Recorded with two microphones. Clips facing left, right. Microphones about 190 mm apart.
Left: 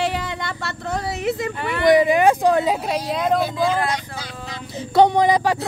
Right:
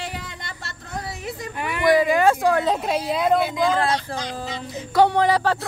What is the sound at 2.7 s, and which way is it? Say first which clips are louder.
Speech: even; centre (ahead or behind).